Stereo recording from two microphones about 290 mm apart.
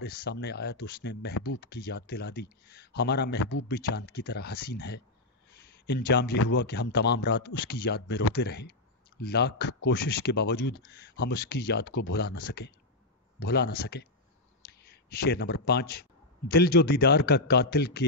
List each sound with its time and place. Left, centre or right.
0.0 s speech: left
5.5 s a sound: left
6.4 s a man's voice: left